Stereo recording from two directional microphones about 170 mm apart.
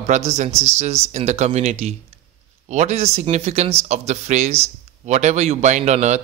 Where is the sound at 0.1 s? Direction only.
45° right (ahead or behind).